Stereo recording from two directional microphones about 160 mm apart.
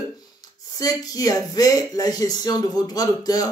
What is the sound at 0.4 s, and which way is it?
Speech, 25° left (ahead or behind).